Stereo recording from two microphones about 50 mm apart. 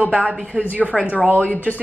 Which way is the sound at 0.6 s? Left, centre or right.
Right.